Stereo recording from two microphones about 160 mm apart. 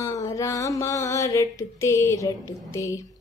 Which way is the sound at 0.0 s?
20° left (ahead or behind).